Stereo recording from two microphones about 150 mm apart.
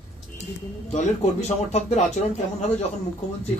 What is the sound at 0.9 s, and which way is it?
Speech, 45° left (ahead or behind).